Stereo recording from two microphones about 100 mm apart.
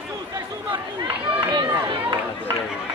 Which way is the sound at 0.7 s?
55° right (ahead or behind).